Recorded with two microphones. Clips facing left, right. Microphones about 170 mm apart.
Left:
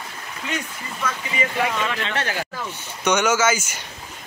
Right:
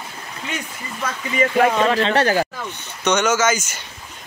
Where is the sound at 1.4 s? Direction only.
45° right (ahead or behind).